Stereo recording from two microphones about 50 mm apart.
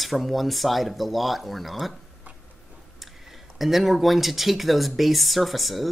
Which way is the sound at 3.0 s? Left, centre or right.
Centre.